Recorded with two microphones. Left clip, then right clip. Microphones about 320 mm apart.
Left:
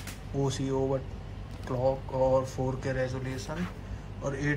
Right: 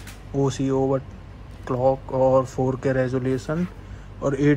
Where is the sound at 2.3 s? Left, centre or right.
Centre.